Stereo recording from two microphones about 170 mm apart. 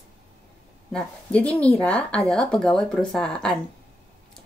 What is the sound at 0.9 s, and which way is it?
Speech, 5° left (ahead or behind).